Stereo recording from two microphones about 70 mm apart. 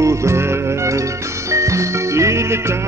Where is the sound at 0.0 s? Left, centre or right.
Right.